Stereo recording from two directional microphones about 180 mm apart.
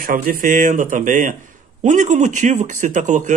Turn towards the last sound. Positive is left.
turn(degrees=-45)  # may be behind; listen again after turning